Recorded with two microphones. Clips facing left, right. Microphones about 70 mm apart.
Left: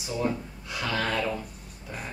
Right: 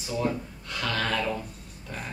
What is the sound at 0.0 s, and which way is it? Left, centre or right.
Speech, centre.